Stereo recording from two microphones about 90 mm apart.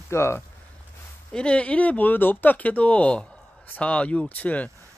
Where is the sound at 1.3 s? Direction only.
10° left (ahead or behind).